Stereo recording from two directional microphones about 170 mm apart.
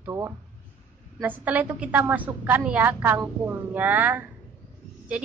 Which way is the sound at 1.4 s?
10° right (ahead or behind).